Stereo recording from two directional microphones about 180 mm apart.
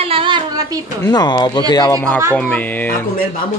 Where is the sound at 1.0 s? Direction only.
20° left (ahead or behind).